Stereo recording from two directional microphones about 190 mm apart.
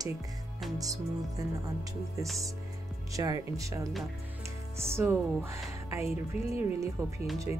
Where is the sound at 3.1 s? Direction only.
15° right (ahead or behind).